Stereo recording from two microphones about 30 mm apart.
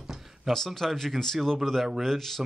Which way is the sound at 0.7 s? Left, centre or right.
Centre.